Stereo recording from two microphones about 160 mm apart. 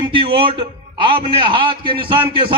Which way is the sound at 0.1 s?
35° right (ahead or behind).